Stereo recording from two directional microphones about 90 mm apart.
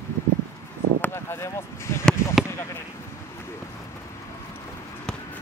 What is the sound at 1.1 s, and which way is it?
Speech, 30° left (ahead or behind).